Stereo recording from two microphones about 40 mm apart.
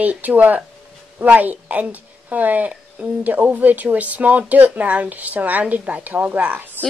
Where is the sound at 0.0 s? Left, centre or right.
Right.